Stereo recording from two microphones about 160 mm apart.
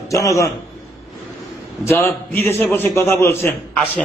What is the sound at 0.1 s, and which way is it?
Speech, 20° left (ahead or behind).